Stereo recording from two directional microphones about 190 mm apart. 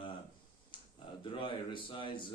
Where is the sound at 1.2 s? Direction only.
25° left (ahead or behind).